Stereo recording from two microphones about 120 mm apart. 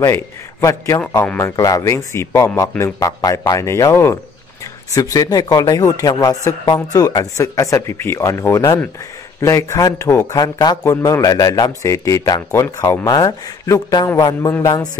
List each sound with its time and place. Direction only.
0.0 s speech: 25° left (ahead or behind)